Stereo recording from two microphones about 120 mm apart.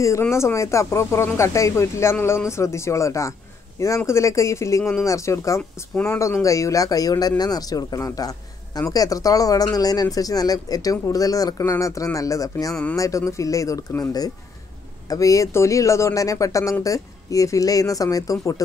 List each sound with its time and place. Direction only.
0.0 s speech: 25° left (ahead or behind)